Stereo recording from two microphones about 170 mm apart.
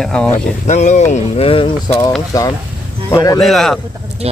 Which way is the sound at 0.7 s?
40° left (ahead or behind).